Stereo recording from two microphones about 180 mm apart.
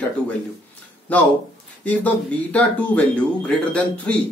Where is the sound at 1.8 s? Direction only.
10° left (ahead or behind).